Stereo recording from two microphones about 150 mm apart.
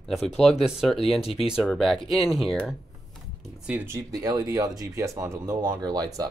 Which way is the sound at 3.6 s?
15° right (ahead or behind).